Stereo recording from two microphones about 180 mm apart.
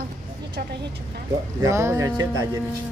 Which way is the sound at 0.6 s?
60° right (ahead or behind).